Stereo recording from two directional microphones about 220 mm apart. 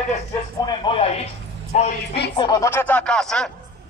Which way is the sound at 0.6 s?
20° left (ahead or behind).